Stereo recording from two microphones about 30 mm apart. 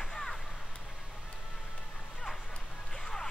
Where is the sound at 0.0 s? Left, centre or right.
Centre.